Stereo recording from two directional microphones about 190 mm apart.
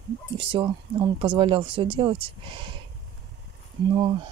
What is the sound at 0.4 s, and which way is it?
Speech, 30° right (ahead or behind).